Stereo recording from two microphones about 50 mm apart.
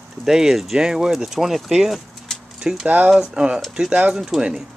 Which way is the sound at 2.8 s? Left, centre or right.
Right.